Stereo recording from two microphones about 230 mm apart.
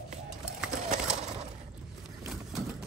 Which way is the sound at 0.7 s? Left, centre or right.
Right.